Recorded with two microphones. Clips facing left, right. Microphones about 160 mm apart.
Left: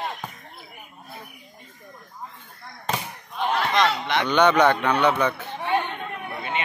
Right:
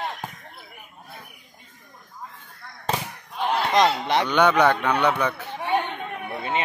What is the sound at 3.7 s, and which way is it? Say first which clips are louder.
Speech: right 6 dB; 35° right (ahead or behind).